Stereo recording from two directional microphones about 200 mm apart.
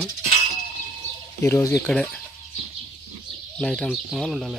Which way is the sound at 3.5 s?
5° left (ahead or behind).